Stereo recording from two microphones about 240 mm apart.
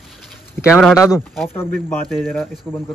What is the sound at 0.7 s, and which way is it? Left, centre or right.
Speech, centre.